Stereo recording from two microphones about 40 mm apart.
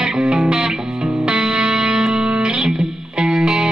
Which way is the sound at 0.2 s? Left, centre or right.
Right.